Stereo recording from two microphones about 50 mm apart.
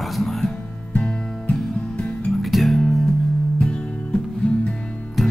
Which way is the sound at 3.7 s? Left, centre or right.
Left.